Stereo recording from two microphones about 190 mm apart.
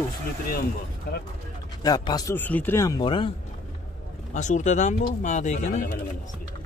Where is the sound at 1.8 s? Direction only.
20° left (ahead or behind).